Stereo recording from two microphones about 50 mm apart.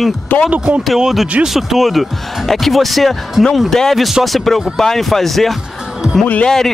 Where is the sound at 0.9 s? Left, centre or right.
Centre.